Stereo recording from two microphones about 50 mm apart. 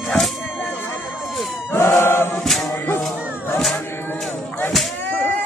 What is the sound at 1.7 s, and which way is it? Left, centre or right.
Chant, left.